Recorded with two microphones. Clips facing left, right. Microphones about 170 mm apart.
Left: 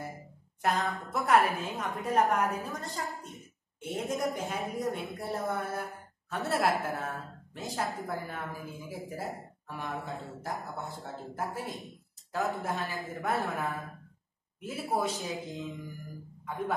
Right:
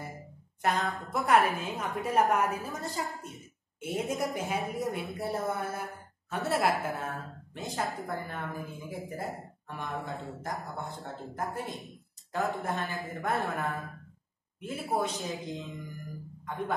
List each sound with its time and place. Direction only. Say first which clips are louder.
0.6 s speech: even; centre (ahead or behind)